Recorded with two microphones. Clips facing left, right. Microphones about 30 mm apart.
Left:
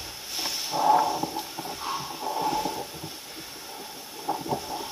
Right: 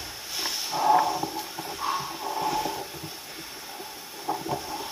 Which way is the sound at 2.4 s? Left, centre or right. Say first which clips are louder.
Even; right.